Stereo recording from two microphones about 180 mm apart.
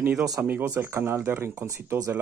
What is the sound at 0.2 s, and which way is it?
Speech, 15° right (ahead or behind).